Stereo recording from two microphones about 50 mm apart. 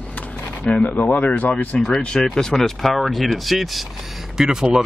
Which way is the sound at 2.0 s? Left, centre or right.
Centre.